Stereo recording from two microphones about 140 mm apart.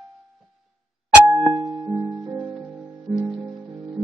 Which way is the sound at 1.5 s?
30° right (ahead or behind).